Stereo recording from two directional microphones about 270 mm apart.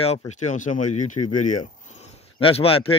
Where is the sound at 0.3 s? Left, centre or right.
Left.